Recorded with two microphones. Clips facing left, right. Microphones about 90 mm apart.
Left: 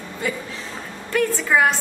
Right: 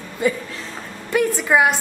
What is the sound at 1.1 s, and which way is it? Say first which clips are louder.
Speech: right 2 dB; 15° right (ahead or behind).